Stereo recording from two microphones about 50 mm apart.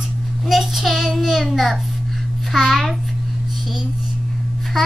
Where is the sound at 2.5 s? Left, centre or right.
Centre.